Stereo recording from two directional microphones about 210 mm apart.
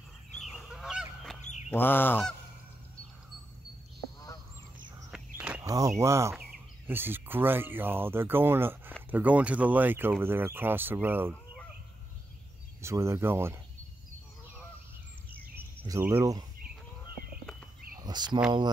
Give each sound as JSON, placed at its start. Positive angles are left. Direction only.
{"t": 0.3, "sound": "goose", "side_deg": 0}
{"t": 5.1, "sound": "walk", "side_deg": -5}
{"t": 5.6, "sound": "speech", "side_deg": -15}
{"t": 12.8, "sound": "speech", "side_deg": -15}
{"t": 15.5, "sound": "a sound", "side_deg": -10}
{"t": 17.9, "sound": "cricket", "side_deg": -20}